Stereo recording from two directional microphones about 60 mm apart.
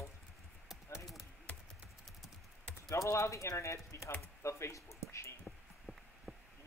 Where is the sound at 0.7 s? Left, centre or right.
Centre.